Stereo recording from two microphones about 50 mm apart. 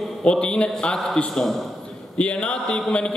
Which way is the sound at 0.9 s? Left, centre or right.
Centre.